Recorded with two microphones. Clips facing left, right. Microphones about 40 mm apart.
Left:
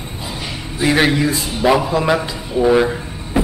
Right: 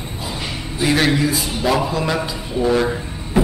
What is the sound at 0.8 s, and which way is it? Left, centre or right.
Speech, centre.